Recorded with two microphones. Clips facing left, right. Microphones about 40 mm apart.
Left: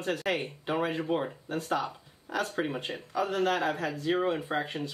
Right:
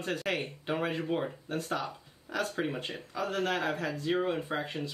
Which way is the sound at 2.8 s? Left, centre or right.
Left.